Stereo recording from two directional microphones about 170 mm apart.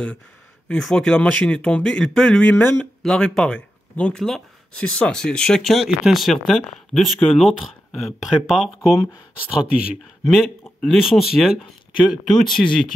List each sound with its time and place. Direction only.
0.7 s speech: 5° left (ahead or behind)
8.6 s speech: 20° left (ahead or behind)
9.5 s speech: 5° right (ahead or behind)